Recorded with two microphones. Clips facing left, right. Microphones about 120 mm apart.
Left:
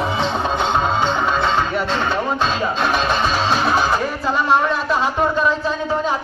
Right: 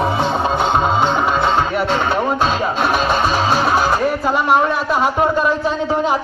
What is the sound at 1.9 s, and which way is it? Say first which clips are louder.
Music: right 3 dB; 10° right (ahead or behind).